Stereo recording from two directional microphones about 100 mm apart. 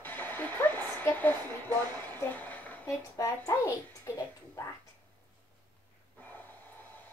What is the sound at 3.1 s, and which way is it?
Speech, 35° left (ahead or behind).